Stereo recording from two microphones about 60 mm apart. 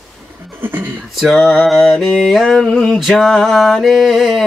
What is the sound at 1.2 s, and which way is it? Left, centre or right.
Mantra, centre.